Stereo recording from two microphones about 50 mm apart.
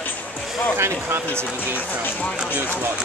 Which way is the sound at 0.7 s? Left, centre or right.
Right.